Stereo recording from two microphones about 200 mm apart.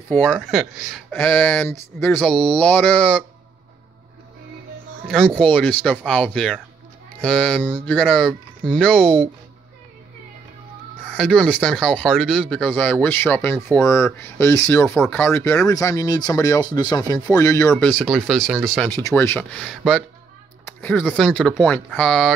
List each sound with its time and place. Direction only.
0.1 s speech: 5° left (ahead or behind)
2.0 s speech: centre (ahead or behind)
5.0 s speech: 5° left (ahead or behind)
11.1 s speech: 5° left (ahead or behind)
18.9 s speech: 10° left (ahead or behind)